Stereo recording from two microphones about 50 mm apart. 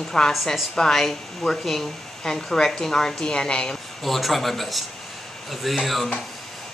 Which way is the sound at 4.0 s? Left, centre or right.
Centre.